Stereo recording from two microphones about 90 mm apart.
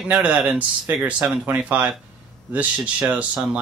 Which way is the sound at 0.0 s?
15° right (ahead or behind).